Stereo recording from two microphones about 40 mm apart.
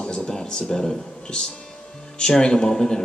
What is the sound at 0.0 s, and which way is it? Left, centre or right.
Music, left.